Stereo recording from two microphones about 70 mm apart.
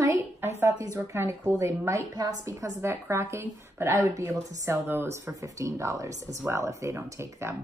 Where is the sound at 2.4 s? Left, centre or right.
Right.